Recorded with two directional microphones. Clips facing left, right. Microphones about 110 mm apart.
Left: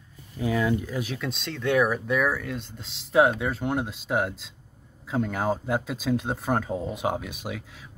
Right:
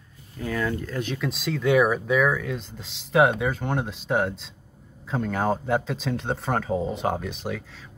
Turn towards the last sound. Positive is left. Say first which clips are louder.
# right 3 dB
turn(degrees=10)  # may be behind; listen again after turning